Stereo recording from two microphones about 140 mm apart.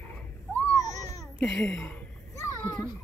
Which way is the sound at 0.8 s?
55° right (ahead or behind).